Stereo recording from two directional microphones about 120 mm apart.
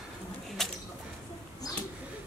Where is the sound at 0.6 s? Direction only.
5° left (ahead or behind).